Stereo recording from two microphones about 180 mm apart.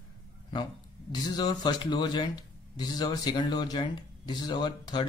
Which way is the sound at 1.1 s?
20° left (ahead or behind).